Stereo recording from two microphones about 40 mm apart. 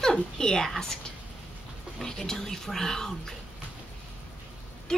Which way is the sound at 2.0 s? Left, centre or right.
Centre.